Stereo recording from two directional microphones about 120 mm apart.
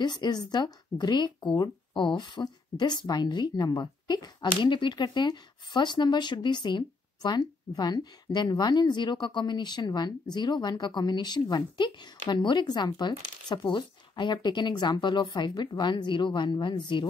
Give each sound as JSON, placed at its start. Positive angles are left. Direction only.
{"t": 0.0, "sound": "speech", "side_deg": 35}